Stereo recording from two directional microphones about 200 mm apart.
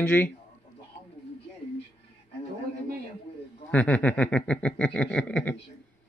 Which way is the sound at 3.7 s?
5° left (ahead or behind).